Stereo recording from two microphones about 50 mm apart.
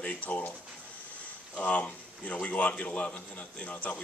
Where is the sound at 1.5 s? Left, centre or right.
Left.